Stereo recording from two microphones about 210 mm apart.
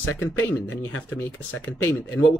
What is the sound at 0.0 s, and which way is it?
Speech, 75° left (ahead or behind).